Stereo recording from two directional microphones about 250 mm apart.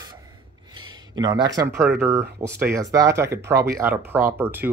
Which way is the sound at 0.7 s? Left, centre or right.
Centre.